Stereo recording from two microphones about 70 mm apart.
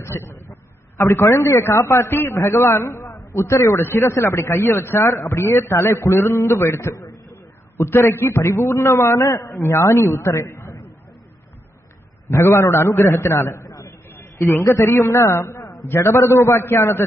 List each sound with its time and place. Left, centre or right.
0.0 s a man's voice: left
12.3 s a man's voice: left
13.7 s a sound: left
14.6 s a man's voice: left
14.9 s a man's voice: left